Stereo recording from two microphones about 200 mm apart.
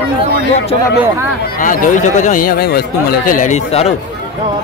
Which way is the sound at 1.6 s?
40° left (ahead or behind).